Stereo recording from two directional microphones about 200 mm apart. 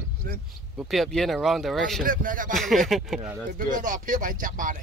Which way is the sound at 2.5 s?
Centre (ahead or behind).